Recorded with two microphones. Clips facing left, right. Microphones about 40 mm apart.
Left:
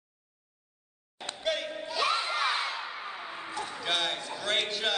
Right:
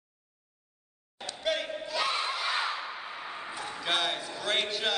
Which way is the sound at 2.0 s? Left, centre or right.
Left.